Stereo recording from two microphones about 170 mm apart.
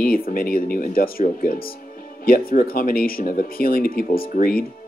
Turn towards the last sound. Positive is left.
turn(degrees=60)  # may be behind; listen again after turning